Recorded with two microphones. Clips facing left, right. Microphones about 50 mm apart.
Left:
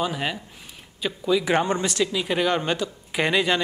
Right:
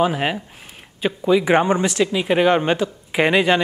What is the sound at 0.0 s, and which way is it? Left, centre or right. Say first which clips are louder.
Speech: right 7 dB; right.